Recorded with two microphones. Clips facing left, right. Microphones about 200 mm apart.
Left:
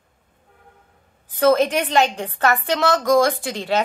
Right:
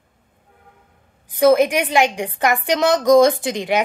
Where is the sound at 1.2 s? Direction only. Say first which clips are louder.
Right 3 dB; 15° right (ahead or behind).